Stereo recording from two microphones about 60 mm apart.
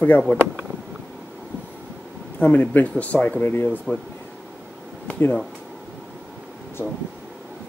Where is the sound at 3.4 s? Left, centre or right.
Left.